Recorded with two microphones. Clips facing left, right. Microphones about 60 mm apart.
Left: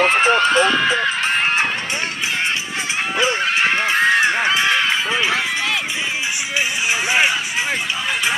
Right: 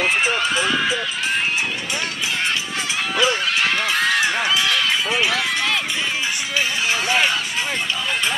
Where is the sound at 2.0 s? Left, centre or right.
Left.